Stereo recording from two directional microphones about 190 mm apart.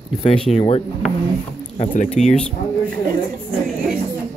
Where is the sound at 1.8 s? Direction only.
40° left (ahead or behind).